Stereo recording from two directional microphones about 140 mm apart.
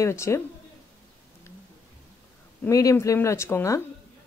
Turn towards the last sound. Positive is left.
turn(degrees=20)  # may be behind; listen again after turning